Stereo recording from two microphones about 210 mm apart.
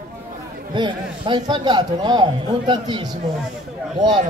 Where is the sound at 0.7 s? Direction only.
20° right (ahead or behind).